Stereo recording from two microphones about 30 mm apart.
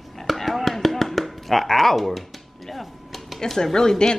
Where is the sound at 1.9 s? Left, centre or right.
Centre.